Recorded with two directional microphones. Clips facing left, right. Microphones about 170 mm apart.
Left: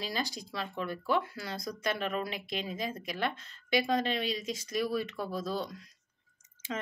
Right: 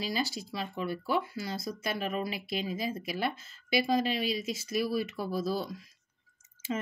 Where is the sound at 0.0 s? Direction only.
5° right (ahead or behind).